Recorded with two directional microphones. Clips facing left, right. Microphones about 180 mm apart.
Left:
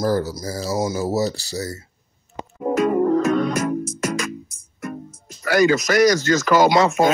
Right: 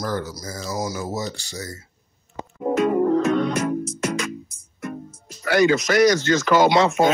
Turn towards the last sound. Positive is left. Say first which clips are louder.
# left 1 dB
turn(degrees=40)  # may be behind; listen again after turning